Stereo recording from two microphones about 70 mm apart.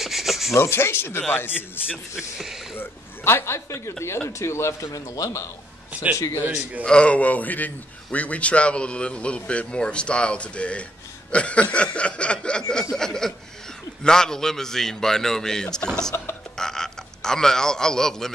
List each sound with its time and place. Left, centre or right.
0.0 s rub: centre
0.6 s speech: left
1.5 s speech: centre
2.7 s speech: left
5.1 s a man's voice: left
6.8 s a man's voice: centre